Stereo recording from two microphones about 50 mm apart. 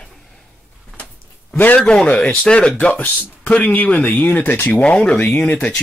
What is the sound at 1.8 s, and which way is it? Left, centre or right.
Speech, centre.